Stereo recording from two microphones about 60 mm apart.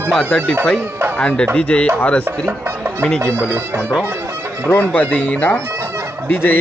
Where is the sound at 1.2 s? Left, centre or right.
Centre.